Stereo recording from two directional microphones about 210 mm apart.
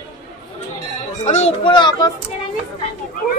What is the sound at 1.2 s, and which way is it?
Speech, 30° left (ahead or behind).